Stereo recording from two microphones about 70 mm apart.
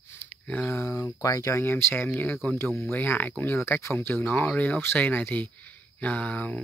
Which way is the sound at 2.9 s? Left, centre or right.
Left.